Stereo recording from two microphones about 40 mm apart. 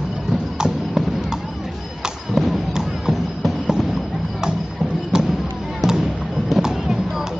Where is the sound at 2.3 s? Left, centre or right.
Centre.